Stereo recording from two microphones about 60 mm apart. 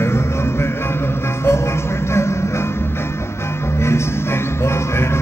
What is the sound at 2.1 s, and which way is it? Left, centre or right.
Music, left.